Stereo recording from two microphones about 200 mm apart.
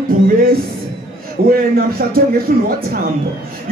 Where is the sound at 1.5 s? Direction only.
50° right (ahead or behind).